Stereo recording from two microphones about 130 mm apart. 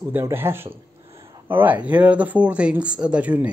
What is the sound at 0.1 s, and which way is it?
Speech, 15° right (ahead or behind).